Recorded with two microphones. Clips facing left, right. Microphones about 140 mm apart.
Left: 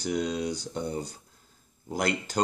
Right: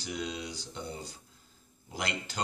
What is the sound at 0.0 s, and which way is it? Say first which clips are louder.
Speech: left 8 dB; 45° left (ahead or behind).